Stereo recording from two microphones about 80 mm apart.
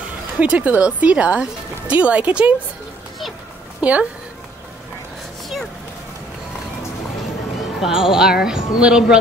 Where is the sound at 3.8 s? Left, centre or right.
Centre.